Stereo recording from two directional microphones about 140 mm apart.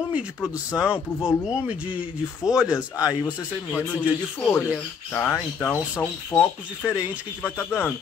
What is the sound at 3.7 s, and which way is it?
Speech, 15° left (ahead or behind).